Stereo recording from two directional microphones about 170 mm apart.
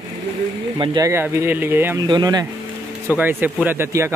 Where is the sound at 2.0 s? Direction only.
25° right (ahead or behind).